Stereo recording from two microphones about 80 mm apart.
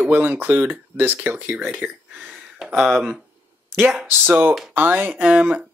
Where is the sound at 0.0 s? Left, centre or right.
Centre.